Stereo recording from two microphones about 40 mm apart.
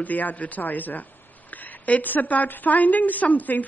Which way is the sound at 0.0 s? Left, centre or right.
Left.